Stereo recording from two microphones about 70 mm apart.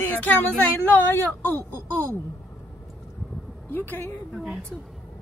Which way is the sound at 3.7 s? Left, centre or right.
Left.